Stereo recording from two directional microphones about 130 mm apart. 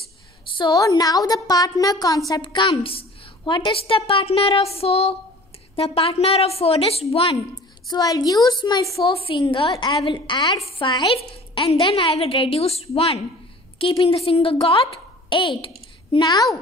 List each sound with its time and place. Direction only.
0.6 s a woman's voice: 30° left (ahead or behind); by 7.3 s 50° left (ahead or behind)
7.9 s a woman's voice: 30° left (ahead or behind)
9.0 s a woman's voice: 45° left (ahead or behind)